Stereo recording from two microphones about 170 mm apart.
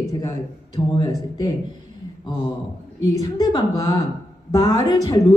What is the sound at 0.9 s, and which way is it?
Speech, 20° left (ahead or behind).